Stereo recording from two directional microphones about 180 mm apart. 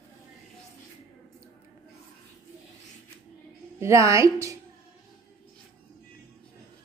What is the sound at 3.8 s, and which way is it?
Speech, 15° right (ahead or behind).